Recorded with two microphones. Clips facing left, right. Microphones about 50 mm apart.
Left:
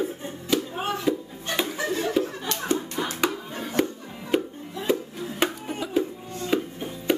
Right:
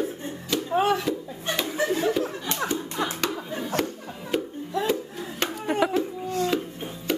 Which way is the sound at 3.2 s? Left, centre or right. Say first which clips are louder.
Left 1 dB; centre.